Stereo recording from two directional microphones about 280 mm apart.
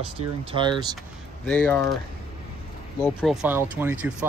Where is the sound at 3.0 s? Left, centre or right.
Centre.